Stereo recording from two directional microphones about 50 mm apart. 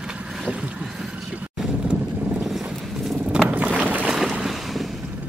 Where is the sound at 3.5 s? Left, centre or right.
Right.